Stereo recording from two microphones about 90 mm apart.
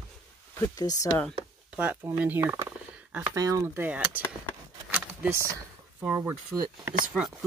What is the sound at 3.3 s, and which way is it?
Speech, 40° right (ahead or behind).